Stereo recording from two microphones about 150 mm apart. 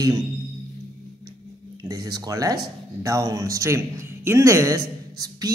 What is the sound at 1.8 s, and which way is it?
A man's voice, 25° right (ahead or behind).